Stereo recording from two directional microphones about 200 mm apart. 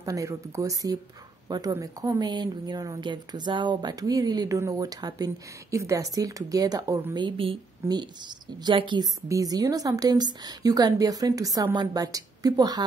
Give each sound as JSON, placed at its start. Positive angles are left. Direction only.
{"t": 0.0, "sound": "speech", "side_deg": -15}